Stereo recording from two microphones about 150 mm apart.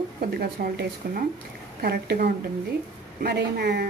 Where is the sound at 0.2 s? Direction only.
80° right.